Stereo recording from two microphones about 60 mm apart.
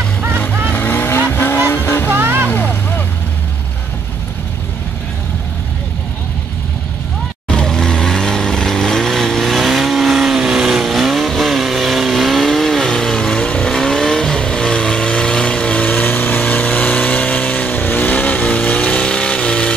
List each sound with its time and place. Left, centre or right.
0.7 s vehicle: left
2.1 s vehicle: right
2.5 s vehicle: left
7.4 s vehicle: centre